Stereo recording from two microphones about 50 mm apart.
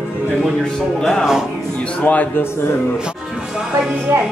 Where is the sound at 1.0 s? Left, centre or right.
Centre.